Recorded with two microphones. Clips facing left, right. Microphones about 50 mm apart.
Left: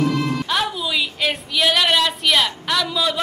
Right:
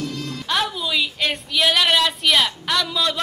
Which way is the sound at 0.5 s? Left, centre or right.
Centre.